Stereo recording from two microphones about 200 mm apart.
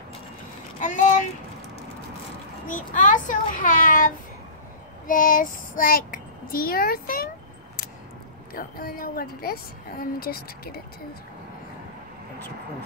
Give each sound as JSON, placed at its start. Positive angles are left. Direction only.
{"t": 0.7, "sound": "speech", "side_deg": 40}
{"t": 2.7, "sound": "a child's voice", "side_deg": 40}
{"t": 8.5, "sound": "a child's voice", "side_deg": 45}